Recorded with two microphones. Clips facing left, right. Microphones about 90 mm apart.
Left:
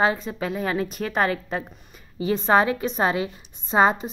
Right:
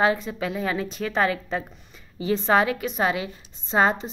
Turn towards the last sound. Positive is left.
turn(degrees=20)  # may be behind; listen again after turning